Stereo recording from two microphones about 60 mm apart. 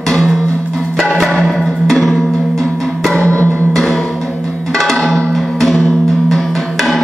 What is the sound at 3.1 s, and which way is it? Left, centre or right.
Music, left.